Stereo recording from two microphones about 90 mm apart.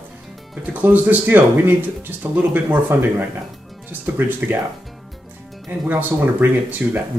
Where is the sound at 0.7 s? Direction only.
20° right (ahead or behind).